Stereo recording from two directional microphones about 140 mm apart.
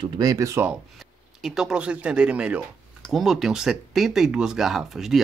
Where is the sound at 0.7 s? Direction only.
Centre (ahead or behind).